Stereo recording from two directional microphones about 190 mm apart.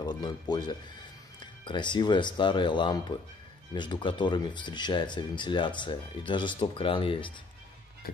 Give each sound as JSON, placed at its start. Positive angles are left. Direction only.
{"t": 0.0, "sound": "speech", "side_deg": 20}